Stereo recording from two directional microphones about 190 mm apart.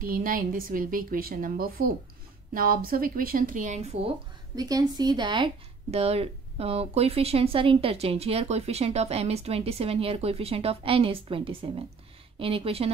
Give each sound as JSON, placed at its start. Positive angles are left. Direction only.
{"t": 0.0, "sound": "a woman's voice", "side_deg": -45}
{"t": 4.6, "sound": "speech", "side_deg": -20}